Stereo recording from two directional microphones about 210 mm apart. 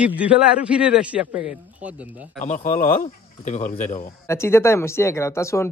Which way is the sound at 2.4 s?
35° left (ahead or behind).